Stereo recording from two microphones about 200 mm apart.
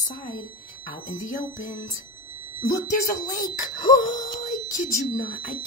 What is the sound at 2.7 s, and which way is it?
Speech, 40° left (ahead or behind).